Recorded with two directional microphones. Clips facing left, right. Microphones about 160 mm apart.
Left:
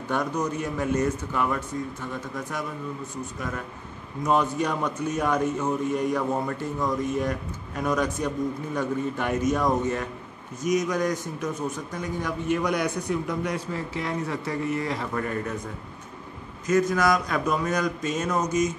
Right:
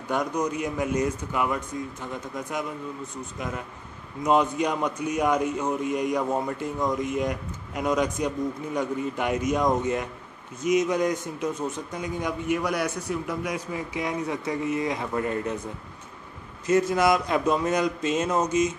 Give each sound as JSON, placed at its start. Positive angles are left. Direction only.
{"t": 0.1, "sound": "a man's voice", "side_deg": -15}
{"t": 12.5, "sound": "a man's voice", "side_deg": -5}
{"t": 16.6, "sound": "a man's voice", "side_deg": -25}